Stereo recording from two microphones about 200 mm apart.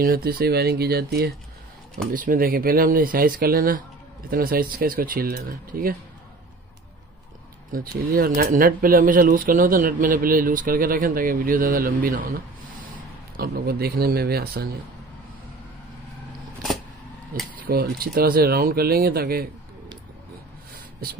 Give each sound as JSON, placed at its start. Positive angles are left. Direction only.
{"t": 0.0, "sound": "speech", "side_deg": -50}
{"t": 7.7, "sound": "speech", "side_deg": -45}
{"t": 13.4, "sound": "speech", "side_deg": -50}
{"t": 17.6, "sound": "speech", "side_deg": -50}